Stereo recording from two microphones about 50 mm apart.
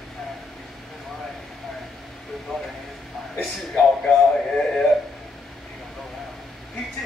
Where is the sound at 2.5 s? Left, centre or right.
Centre.